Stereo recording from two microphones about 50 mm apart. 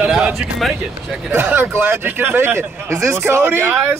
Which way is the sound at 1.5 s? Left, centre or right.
Right.